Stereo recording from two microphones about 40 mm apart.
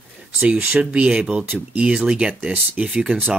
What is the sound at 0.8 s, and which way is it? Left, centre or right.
Speech, right.